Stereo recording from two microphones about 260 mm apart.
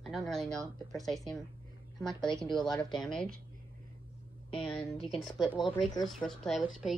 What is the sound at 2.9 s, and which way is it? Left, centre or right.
Speech, centre.